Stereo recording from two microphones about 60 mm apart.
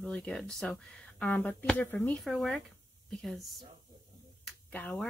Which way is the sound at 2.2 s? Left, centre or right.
Centre.